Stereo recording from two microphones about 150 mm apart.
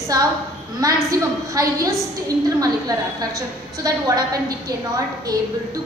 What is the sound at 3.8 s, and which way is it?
Speech, 25° right (ahead or behind).